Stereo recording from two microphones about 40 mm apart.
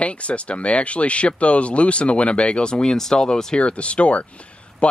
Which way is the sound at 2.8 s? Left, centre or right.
Centre.